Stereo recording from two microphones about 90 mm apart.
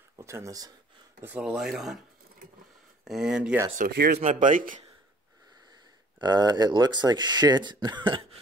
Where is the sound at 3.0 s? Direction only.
5° right (ahead or behind).